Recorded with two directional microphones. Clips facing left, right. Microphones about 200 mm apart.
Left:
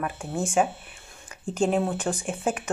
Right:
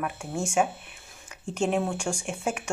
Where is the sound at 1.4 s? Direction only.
30° left (ahead or behind).